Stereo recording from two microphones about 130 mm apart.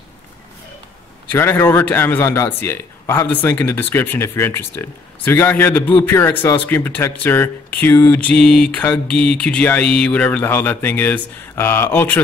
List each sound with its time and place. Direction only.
1.3 s speech: 15° left (ahead or behind)